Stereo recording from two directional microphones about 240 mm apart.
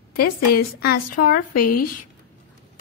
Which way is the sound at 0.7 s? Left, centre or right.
Left.